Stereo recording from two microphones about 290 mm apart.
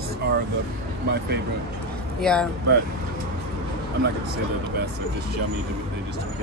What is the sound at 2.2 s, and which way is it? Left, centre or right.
Speech, centre.